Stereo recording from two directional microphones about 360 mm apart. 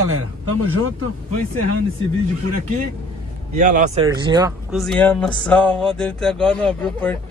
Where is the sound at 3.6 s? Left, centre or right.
Right.